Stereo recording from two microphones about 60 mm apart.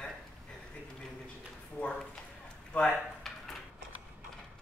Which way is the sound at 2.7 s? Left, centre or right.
Left.